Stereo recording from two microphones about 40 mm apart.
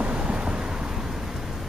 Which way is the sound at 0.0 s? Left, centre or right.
Right.